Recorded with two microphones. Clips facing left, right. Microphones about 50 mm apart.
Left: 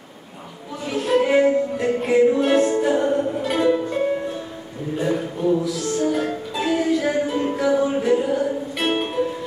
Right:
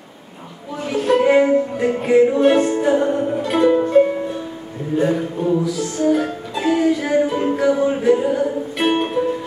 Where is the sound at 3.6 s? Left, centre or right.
Right.